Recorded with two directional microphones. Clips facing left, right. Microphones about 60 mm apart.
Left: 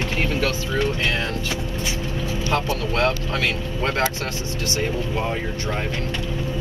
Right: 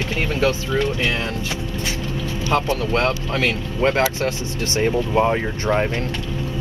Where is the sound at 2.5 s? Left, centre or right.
Right.